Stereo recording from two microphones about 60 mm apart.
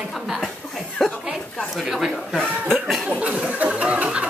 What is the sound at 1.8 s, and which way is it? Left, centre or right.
Speech, centre.